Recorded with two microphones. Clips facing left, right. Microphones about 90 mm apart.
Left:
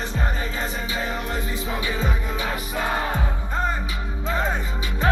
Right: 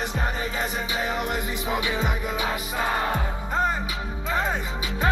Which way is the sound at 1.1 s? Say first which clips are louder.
Right 1 dB; 15° right (ahead or behind).